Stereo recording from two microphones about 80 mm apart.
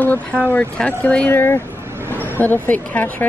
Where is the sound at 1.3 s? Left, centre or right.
Left.